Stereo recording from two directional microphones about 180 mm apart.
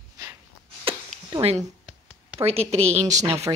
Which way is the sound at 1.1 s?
45° right (ahead or behind).